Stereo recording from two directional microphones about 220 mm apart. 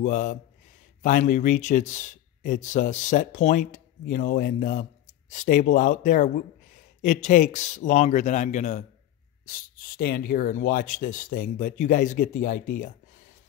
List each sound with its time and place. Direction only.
0.0 s speech: 35° left (ahead or behind)